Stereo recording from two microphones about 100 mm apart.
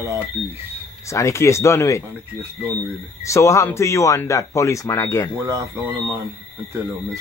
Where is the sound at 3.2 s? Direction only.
30° left (ahead or behind).